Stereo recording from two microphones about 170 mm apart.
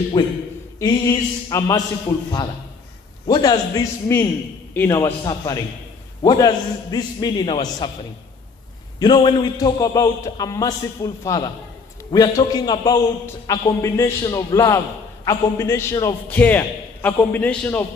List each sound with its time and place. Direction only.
0.2 s a man's voice: 25° left (ahead or behind)
4.7 s a man's voice: 15° left (ahead or behind)
9.0 s a man's voice: 25° left (ahead or behind); by 17.8 s 10° left (ahead or behind)